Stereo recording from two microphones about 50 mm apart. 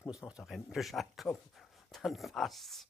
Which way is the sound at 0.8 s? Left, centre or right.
Centre.